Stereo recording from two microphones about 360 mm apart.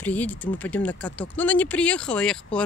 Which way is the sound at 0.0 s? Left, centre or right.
Centre.